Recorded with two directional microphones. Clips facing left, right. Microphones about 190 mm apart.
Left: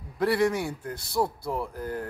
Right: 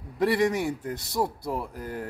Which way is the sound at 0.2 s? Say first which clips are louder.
Right 1 dB; 15° right (ahead or behind).